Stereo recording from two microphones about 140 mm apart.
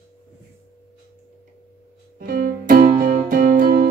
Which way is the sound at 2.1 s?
90° right.